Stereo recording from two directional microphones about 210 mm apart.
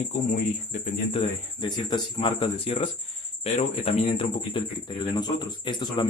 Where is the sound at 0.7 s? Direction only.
30° left (ahead or behind).